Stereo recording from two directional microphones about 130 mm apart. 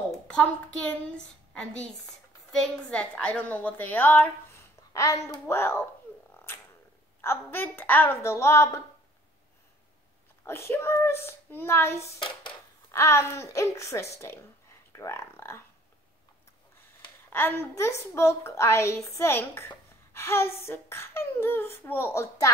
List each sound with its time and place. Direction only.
0.7 s a woman's voice: 10° left (ahead or behind)
7.2 s a woman's voice: 20° left (ahead or behind)
10.4 s a woman's voice: 20° left (ahead or behind)
12.0 s speech: 55° left (ahead or behind)
12.9 s a woman's voice: 20° left (ahead or behind)
17.3 s a woman's voice: 20° left (ahead or behind)